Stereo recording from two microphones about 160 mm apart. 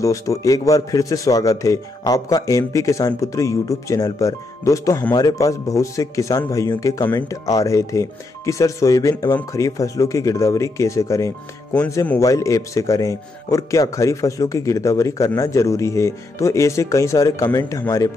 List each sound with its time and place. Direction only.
0.0 s speech: 20° left (ahead or behind)